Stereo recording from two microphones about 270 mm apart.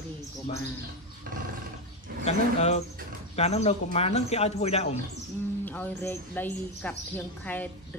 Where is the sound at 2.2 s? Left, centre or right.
Left.